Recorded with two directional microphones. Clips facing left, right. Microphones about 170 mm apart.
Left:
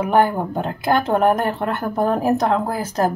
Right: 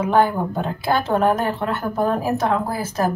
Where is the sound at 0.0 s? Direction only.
15° left (ahead or behind).